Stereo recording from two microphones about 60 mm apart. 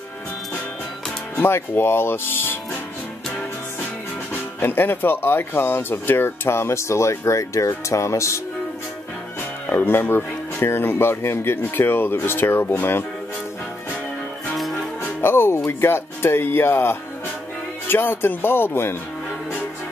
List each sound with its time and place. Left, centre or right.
1.3 s speech: left
4.3 s speech: left
9.4 s speech: left
15.2 s music: left
15.6 s speech: left